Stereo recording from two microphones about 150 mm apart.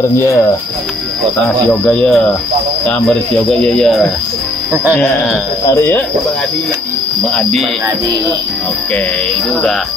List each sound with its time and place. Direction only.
0.2 s speech: 20° left (ahead or behind)
1.4 s speech: 5° left (ahead or behind)
5.0 s speech: 15° left (ahead or behind)